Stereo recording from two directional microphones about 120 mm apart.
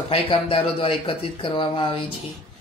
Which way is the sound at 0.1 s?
50° left (ahead or behind).